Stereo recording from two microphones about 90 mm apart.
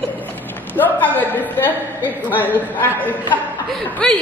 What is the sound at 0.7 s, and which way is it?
A woman's voice, 20° left (ahead or behind).